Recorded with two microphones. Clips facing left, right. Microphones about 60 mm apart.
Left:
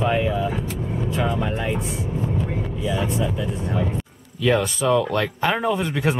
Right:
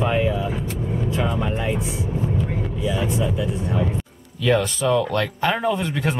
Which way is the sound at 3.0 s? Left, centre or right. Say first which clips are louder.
Right 1 dB; centre.